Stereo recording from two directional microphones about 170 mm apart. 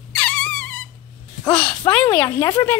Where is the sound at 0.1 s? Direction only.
5° left (ahead or behind).